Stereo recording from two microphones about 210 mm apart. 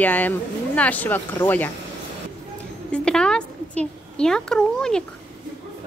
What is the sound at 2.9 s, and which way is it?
A woman's voice, 5° left (ahead or behind).